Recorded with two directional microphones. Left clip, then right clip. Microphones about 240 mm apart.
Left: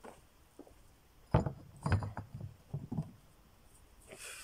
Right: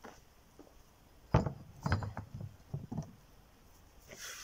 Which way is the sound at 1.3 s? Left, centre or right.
Centre.